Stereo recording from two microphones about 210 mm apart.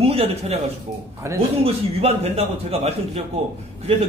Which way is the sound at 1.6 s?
30° right (ahead or behind).